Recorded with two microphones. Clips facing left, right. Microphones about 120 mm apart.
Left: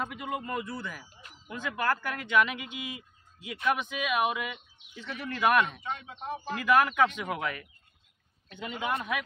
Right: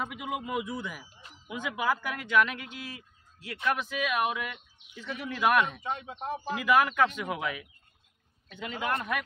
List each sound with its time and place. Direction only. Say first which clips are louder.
0.0 s speech: even; 5° right (ahead or behind)
5.9 s speech: right 2 dB; 30° right (ahead or behind)
6.4 s speech: even; 5° right (ahead or behind)
8.6 s a man's voice: even; 10° left (ahead or behind)